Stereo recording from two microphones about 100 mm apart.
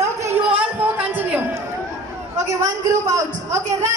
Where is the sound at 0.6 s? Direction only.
15° right (ahead or behind).